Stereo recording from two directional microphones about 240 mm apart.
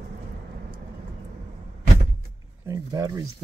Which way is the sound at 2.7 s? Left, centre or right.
Centre.